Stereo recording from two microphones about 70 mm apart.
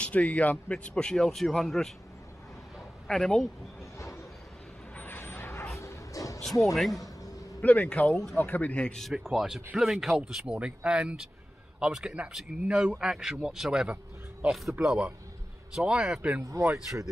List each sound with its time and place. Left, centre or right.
0.0 s a man's voice: left; by 2.0 s centre
3.1 s a man's voice: centre
4.9 s vehicle: left
5.8 s a sound: left
6.4 s speech: centre
7.6 s a man's voice: left
8.1 s speech: centre
8.4 s a man's voice: left
9.1 s speech: centre